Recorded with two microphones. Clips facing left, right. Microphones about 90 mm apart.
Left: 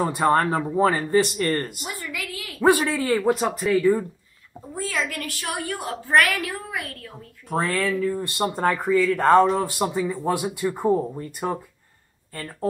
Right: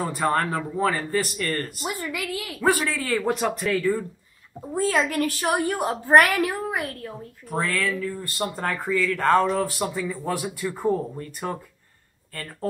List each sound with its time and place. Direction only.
0.0 s speech: 20° left (ahead or behind)
0.3 s speech: 30° left (ahead or behind)
1.8 s a woman's voice: 25° right (ahead or behind)
3.0 s speech: 15° left (ahead or behind)
3.3 s speech: 5° left (ahead or behind)
4.7 s a woman's voice: 35° right (ahead or behind)
7.4 s speech: 25° left (ahead or behind)
8.7 s speech: 10° left (ahead or behind)